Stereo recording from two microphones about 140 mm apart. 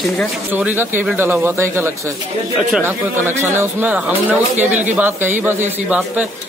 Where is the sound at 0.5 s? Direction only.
10° right (ahead or behind).